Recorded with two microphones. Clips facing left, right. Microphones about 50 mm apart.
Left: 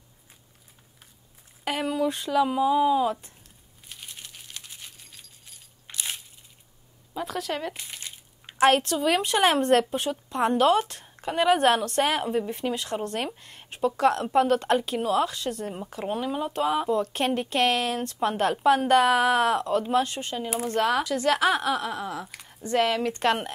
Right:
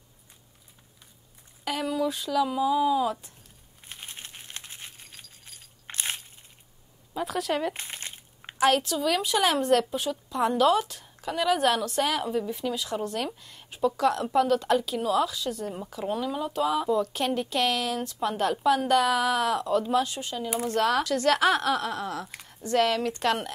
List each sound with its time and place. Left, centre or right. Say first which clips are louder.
1.6 s a sound: left 1 dB; left
2.0 s speech: left 4 dB; left
3.9 s a sound: right 1 dB; right
7.2 s speech: right 2 dB; centre
7.7 s crumpling: right 2 dB; right
8.5 s a woman's voice: left 3 dB; left
16.1 s a woman's voice: left 1 dB; left
20.6 s a woman's voice: even; centre
22.6 s speech: even; left